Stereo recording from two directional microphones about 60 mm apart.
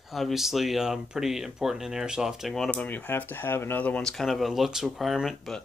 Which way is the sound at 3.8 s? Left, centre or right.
Left.